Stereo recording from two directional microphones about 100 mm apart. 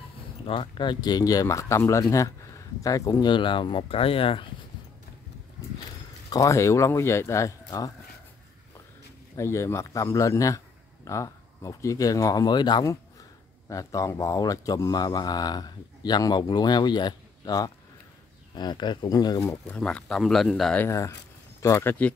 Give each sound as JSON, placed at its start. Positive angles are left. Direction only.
{"t": 0.5, "sound": "speech", "side_deg": 55}
{"t": 3.3, "sound": "speech", "side_deg": 55}
{"t": 6.3, "sound": "speech", "side_deg": 30}
{"t": 9.4, "sound": "speech", "side_deg": 30}
{"t": 13.7, "sound": "speech", "side_deg": 35}
{"t": 19.8, "sound": "speech", "side_deg": 5}
{"t": 21.7, "sound": "speech", "side_deg": 20}